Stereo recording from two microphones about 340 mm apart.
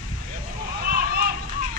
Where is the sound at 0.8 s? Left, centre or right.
Right.